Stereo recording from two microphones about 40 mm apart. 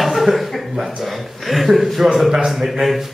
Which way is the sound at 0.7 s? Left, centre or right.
Centre.